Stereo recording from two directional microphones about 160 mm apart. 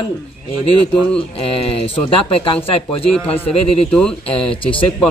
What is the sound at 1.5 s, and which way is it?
Speech, 35° left (ahead or behind).